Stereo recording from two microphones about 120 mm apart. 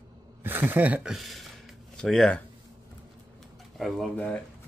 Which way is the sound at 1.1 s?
Centre (ahead or behind).